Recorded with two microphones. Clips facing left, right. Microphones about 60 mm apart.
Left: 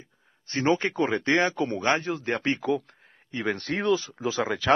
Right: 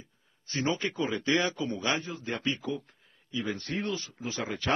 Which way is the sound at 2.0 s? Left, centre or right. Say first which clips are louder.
Left 8 dB; left.